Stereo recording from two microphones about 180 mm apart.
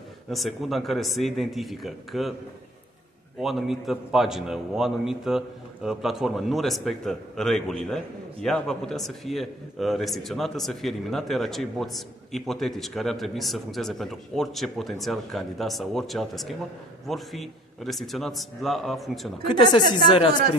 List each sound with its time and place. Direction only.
0.3 s a man's voice: centre (ahead or behind)
3.3 s a man's voice: centre (ahead or behind)
19.4 s a woman's voice: 25° left (ahead or behind)